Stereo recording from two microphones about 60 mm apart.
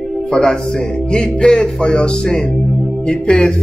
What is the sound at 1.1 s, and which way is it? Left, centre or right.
Speech, centre.